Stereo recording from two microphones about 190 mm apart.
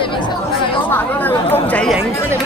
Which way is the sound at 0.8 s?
10° left (ahead or behind).